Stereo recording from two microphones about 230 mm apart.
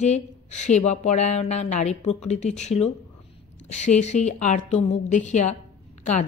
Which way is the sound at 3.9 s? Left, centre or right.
Left.